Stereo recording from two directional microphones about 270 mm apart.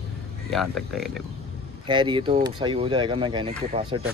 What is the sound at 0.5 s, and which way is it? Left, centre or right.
Speech, centre.